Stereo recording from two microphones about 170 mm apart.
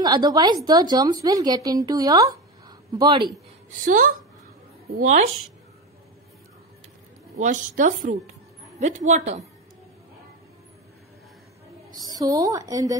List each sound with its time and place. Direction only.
0.0 s speech: 25° right (ahead or behind)
3.8 s a woman's voice: 50° right (ahead or behind)
7.3 s a woman's voice: 45° right (ahead or behind)
11.9 s a woman's voice: 25° right (ahead or behind)